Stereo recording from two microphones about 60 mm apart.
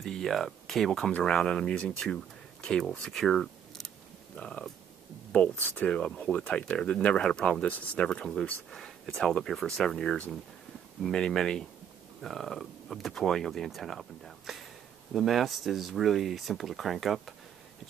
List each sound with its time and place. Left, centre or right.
0.0 s speech: centre
4.4 s speech: centre
8.7 s speech: centre